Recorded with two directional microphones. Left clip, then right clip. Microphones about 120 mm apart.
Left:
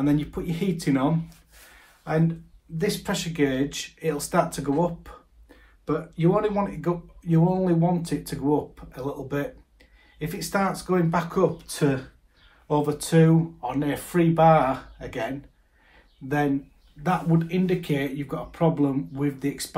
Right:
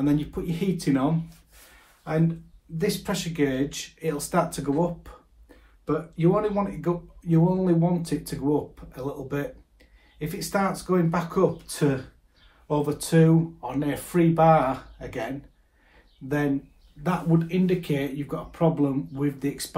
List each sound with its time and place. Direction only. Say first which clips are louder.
0.0 s speech: left 1 dB; 35° left (ahead or behind)
2.8 s speech: left 1 dB; 25° left (ahead or behind)
4.8 s a sound: left 2 dB; 25° left (ahead or behind)
6.3 s speech: left 1 dB; 25° left (ahead or behind)